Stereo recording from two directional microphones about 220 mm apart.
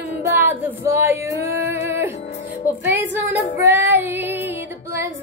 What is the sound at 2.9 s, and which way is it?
Female singing, 10° right (ahead or behind).